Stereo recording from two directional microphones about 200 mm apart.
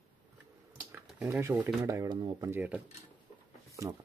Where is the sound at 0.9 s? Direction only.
5° right (ahead or behind).